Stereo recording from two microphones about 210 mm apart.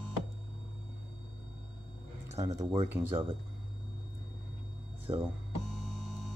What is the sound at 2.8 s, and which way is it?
Speech, 10° right (ahead or behind).